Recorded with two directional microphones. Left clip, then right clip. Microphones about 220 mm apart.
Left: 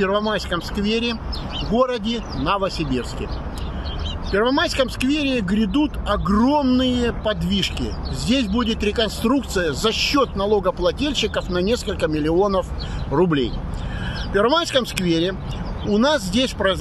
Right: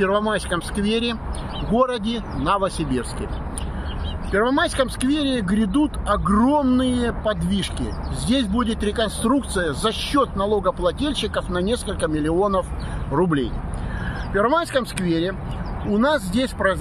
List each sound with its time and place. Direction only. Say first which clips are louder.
0.0 s speech: even; centre (ahead or behind)
4.3 s speech: left 1 dB; 10° left (ahead or behind)